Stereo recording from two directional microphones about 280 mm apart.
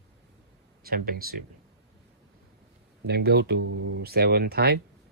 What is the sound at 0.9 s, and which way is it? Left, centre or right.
Speech, right.